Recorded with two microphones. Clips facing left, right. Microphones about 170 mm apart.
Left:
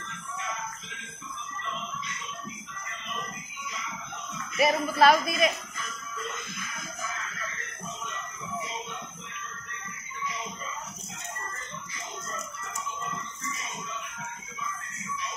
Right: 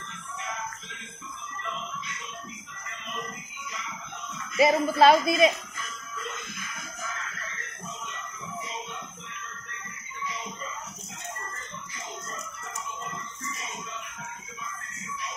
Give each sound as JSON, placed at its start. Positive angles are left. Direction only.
{"t": 4.6, "sound": "a man's voice", "side_deg": -25}